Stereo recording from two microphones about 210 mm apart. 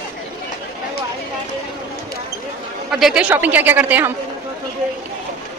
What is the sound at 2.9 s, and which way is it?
A woman's voice, centre (ahead or behind).